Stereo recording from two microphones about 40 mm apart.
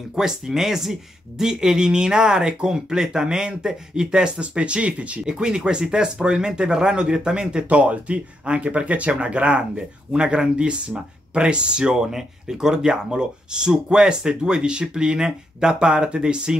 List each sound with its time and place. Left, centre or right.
0.1 s speech: centre; by 5.2 s right
5.2 s speech: right
7.6 s speech: right